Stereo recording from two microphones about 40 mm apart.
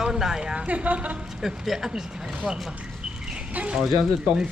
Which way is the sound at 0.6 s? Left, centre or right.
Right.